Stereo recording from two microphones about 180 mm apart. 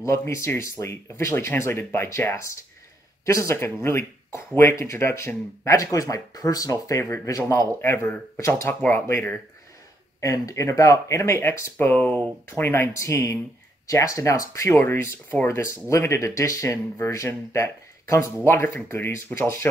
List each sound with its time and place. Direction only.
0.0 s speech: 15° left (ahead or behind)
10.2 s speech: 20° left (ahead or behind)